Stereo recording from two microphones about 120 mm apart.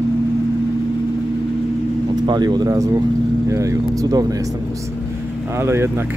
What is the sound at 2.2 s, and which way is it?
Speech, 35° right (ahead or behind).